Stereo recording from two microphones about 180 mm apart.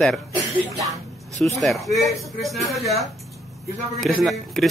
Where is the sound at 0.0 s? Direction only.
Centre (ahead or behind).